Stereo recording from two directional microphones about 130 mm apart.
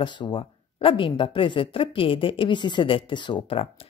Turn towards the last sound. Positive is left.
turn(degrees=45)  # may be behind; listen again after turning